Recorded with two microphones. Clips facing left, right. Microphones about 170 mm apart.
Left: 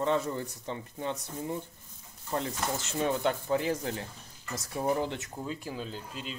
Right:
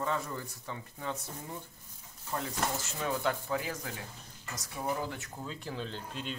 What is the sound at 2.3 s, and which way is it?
Speech, 25° left (ahead or behind).